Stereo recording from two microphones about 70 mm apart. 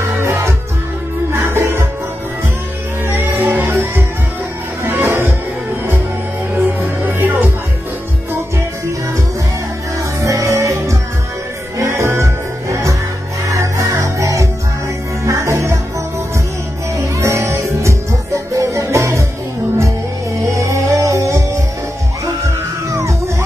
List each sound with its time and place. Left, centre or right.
0.0 s music: right
3.1 s music: right
6.5 s music: right
9.9 s music: right
16.9 s music: right
20.5 s music: right